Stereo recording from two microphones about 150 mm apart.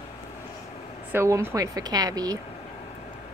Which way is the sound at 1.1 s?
15° right (ahead or behind).